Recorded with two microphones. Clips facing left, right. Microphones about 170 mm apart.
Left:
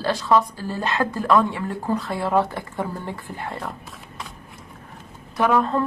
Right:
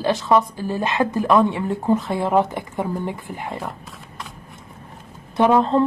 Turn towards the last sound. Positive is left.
turn(degrees=-25)  # may be behind; listen again after turning